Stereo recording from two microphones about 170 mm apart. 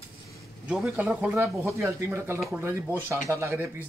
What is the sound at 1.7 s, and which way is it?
Speech, 15° right (ahead or behind).